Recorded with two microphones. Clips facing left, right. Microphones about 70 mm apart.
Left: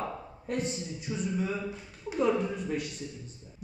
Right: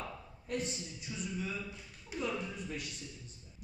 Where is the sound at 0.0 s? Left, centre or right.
Left.